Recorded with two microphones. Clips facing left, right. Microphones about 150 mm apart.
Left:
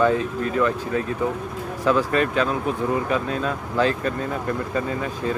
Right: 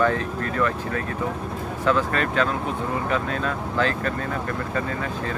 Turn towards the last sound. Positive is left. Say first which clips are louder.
# left 3 dB
turn(degrees=15)  # may be behind; listen again after turning